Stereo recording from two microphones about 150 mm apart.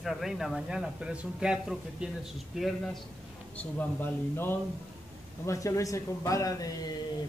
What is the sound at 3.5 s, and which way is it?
A man's voice, 10° left (ahead or behind).